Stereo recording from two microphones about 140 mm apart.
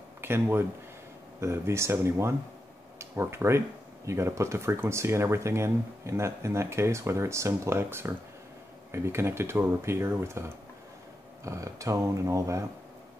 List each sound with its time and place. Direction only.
0.2 s speech: 15° right (ahead or behind)
11.4 s speech: 20° right (ahead or behind)